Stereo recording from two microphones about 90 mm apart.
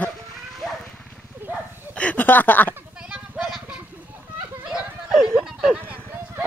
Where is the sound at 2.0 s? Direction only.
15° left (ahead or behind).